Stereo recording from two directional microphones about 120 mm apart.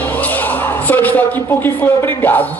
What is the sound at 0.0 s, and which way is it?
Speech, 15° left (ahead or behind).